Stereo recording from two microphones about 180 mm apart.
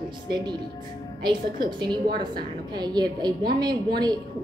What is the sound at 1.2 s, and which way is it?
A woman's voice, 25° right (ahead or behind).